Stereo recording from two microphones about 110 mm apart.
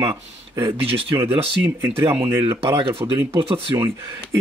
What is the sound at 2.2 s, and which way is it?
Speech, 20° right (ahead or behind).